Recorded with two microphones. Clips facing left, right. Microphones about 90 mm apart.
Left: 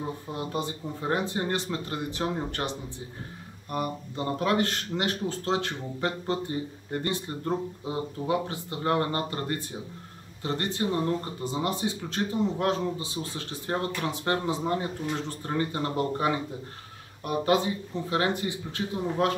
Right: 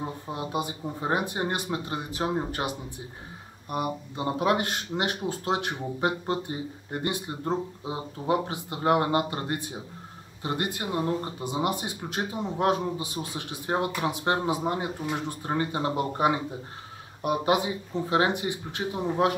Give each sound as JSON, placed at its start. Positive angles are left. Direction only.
{"t": 0.0, "sound": "speech", "side_deg": -20}